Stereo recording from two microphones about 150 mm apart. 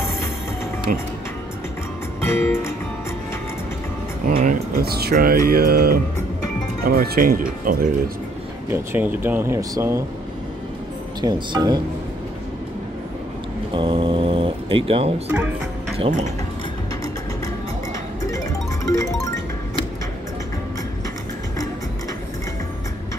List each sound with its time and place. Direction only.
0.9 s speech: 70° right (ahead or behind)
2.2 s music: 15° left (ahead or behind)
4.3 s speech: 80° right
5.5 s mantra: 90° right
6.8 s speech: 90° right; by 7.9 s 65° right (ahead or behind)
8.6 s speech: 15° right (ahead or behind)
11.1 s speech: 30° right (ahead or behind)
13.7 s speech: 35° right (ahead or behind)
15.2 s speech: 10° right (ahead or behind)
18.2 s music: 20° left (ahead or behind)